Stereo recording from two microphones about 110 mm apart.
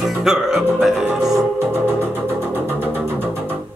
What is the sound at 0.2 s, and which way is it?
Music, 5° right (ahead or behind).